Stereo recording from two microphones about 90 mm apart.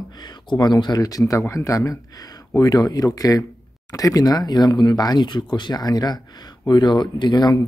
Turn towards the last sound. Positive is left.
turn(degrees=50)  # may be behind; listen again after turning